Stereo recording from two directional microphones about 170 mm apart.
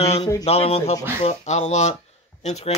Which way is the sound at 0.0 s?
40° left (ahead or behind).